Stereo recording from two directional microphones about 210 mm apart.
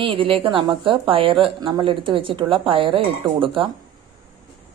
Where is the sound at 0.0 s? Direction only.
25° right (ahead or behind).